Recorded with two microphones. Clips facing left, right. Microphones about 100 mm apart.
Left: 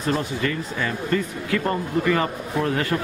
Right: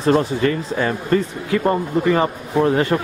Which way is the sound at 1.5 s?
25° right (ahead or behind).